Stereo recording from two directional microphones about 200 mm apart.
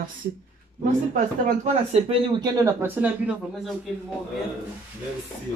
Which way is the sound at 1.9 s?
25° right (ahead or behind).